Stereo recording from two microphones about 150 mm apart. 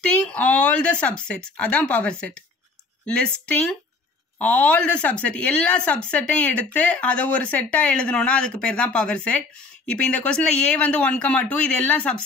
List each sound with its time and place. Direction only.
0.0 s speech: 10° left (ahead or behind)
3.4 s speech: 10° left (ahead or behind)